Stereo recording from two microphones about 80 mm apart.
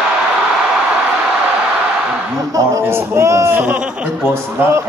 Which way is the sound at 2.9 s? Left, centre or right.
Right.